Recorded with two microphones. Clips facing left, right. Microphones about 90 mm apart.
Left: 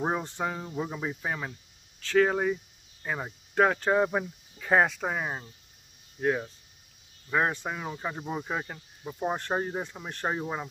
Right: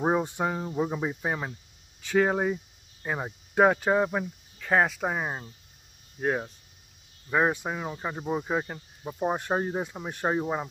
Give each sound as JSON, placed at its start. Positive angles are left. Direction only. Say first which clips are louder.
{"t": 0.0, "sound": "speech", "louder": "right 4 dB", "side_deg": -15}
{"t": 6.2, "sound": "speech", "louder": "even", "side_deg": -20}
{"t": 7.2, "sound": "speech", "louder": "right 2 dB", "side_deg": -10}